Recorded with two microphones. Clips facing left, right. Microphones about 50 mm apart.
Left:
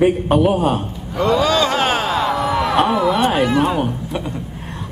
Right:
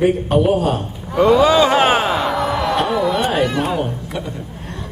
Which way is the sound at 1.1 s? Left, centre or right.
Centre.